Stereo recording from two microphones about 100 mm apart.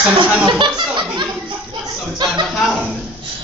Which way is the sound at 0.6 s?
50° right (ahead or behind).